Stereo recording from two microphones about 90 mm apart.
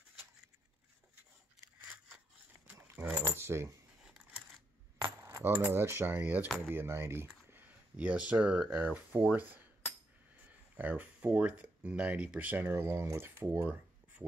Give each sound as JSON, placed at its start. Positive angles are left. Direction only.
{"t": 2.7, "sound": "speech", "side_deg": -20}
{"t": 5.0, "sound": "coin", "side_deg": -30}
{"t": 5.5, "sound": "speech", "side_deg": -25}
{"t": 10.8, "sound": "speech", "side_deg": -20}